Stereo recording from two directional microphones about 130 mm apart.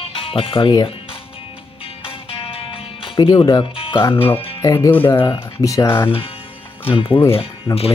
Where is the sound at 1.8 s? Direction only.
45° left (ahead or behind).